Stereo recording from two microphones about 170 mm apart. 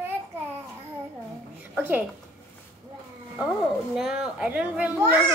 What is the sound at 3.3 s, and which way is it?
A child's voice, centre (ahead or behind).